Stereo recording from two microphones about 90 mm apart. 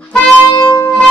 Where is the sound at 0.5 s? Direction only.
45° left (ahead or behind).